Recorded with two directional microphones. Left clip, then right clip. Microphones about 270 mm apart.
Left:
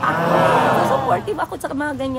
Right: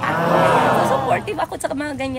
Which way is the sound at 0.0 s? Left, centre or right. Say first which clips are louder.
Even; centre.